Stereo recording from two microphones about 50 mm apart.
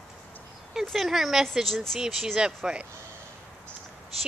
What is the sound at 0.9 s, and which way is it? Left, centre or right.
Speech, centre.